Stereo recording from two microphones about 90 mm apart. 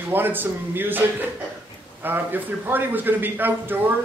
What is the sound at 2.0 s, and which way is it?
Speech, 20° right (ahead or behind).